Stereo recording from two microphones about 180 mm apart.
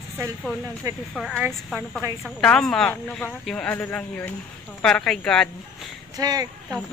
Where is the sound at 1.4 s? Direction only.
10° right (ahead or behind).